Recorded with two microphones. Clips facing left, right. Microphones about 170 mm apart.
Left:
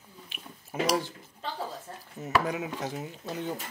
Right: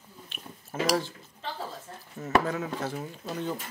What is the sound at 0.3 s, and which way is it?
Dishes, 10° left (ahead or behind).